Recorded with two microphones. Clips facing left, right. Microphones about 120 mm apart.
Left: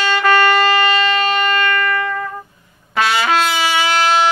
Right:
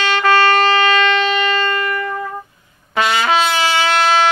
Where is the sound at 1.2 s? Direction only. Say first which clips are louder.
Even; 45° left (ahead or behind).